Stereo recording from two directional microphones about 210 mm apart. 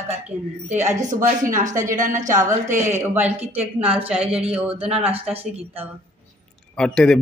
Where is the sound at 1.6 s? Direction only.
35° right (ahead or behind).